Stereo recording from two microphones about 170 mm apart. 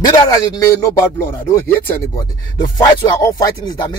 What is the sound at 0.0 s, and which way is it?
Speech, 20° left (ahead or behind).